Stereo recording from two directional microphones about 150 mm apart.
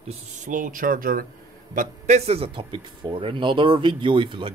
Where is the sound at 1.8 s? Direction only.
50° right (ahead or behind).